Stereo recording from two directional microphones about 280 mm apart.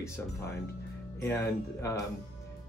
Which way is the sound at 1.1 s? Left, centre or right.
Centre.